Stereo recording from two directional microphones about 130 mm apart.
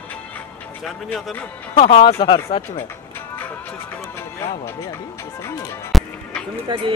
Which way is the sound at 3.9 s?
15° left (ahead or behind).